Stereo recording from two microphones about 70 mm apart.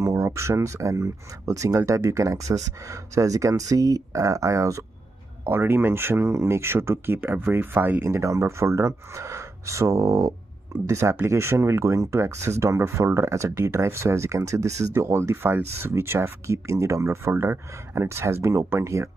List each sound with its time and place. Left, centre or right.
0.1 s speech: right
5.4 s speech: right
8.0 s speech: right
10.9 s speech: right